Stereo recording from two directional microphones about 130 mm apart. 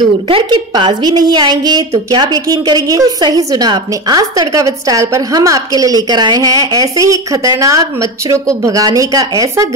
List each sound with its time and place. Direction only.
0.3 s a woman's voice: 35° right (ahead or behind)